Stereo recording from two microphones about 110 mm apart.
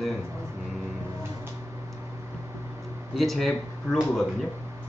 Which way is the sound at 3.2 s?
Centre (ahead or behind).